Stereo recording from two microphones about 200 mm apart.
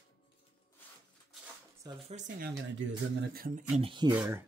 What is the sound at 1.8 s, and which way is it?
Speech, 35° right (ahead or behind).